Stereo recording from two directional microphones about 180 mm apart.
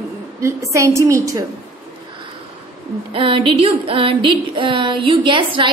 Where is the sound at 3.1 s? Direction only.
30° right (ahead or behind).